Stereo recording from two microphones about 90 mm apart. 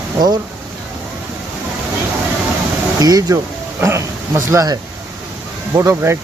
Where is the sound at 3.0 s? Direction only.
40° right (ahead or behind).